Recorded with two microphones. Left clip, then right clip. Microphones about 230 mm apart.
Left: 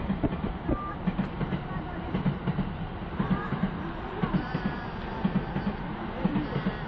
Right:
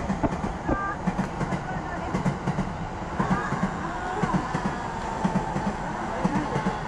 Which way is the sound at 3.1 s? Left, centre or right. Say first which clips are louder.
Right 6 dB; centre.